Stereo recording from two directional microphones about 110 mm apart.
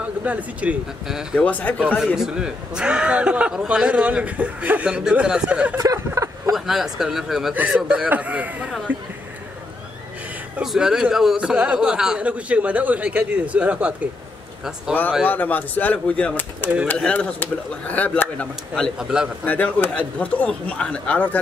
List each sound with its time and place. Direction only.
0.0 s a man's voice: 15° right (ahead or behind)
1.4 s speech: 10° left (ahead or behind)
1.8 s a man's voice: 10° right (ahead or behind)
5.8 s speech: 30° right (ahead or behind)
6.5 s a man's voice: centre (ahead or behind)
10.6 s a man's voice: 5° right (ahead or behind)
15.2 s speech: 15° left (ahead or behind)
18.9 s a man's voice: 5° right (ahead or behind)
19.4 s speech: 15° left (ahead or behind)